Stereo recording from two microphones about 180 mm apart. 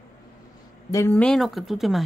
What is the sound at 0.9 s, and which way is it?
Speech, 20° left (ahead or behind).